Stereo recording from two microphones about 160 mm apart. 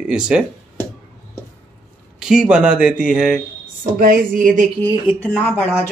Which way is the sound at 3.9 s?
60° right (ahead or behind).